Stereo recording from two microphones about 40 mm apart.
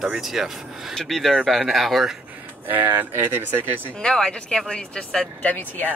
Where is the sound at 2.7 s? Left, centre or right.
Right.